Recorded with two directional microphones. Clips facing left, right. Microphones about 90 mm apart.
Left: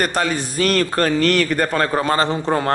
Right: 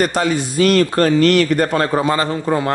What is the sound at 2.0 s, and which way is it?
Speech, 40° left (ahead or behind).